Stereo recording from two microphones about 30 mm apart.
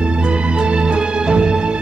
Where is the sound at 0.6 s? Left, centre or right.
Right.